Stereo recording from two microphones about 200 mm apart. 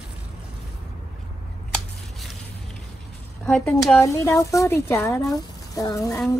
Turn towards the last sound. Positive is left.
turn(degrees=15)  # may be behind; listen again after turning